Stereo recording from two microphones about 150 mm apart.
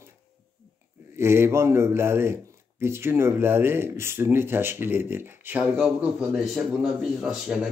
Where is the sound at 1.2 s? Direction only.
15° right (ahead or behind).